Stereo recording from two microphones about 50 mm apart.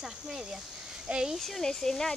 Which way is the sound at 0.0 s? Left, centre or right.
Centre.